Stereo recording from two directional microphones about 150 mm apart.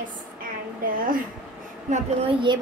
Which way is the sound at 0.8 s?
70° right (ahead or behind).